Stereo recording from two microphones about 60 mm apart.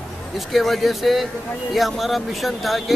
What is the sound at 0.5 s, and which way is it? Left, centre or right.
Speech, centre.